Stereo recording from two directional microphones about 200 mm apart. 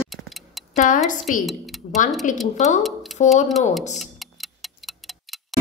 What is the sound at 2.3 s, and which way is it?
Speech, 40° left (ahead or behind).